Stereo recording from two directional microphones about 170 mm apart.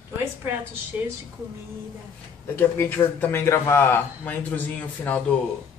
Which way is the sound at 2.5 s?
15° left (ahead or behind).